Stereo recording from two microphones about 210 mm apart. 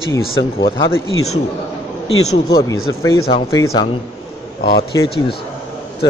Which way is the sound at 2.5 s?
15° left (ahead or behind).